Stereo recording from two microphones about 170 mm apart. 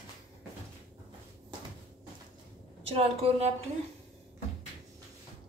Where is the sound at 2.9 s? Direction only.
35° right (ahead or behind).